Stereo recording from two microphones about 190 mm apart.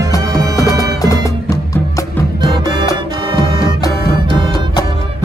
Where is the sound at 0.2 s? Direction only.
20° right (ahead or behind).